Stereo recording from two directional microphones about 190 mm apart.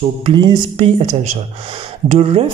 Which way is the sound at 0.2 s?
25° right (ahead or behind).